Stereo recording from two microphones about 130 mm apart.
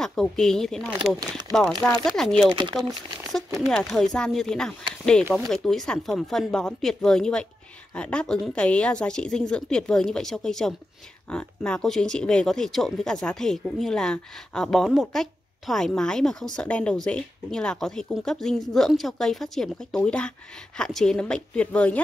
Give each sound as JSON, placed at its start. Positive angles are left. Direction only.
{"t": 0.0, "sound": "speech", "side_deg": 5}
{"t": 2.5, "sound": "speech", "side_deg": -35}
{"t": 3.6, "sound": "speech", "side_deg": 0}